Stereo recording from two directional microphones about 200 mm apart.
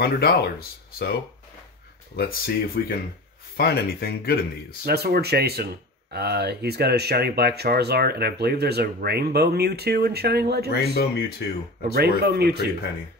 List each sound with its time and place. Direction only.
0.0 s speech: 50° left (ahead or behind)
2.1 s speech: 50° left (ahead or behind)
4.8 s speech: 50° right (ahead or behind)
11.0 s speech: 55° left (ahead or behind)
11.9 s speech: 50° right (ahead or behind)